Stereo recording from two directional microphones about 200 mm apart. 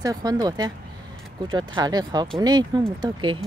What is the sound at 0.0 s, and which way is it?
Speech, 20° right (ahead or behind).